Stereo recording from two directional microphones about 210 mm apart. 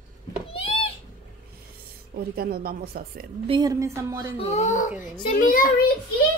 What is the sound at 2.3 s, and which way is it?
Speech, 45° right (ahead or behind).